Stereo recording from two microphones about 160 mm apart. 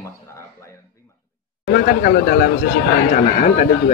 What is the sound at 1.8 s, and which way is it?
Speech, 65° left (ahead or behind).